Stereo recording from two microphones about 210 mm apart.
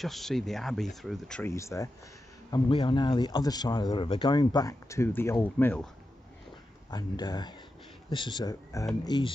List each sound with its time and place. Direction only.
0.0 s speech: centre (ahead or behind)
1.5 s speech: 15° left (ahead or behind)
6.9 s speech: 20° left (ahead or behind)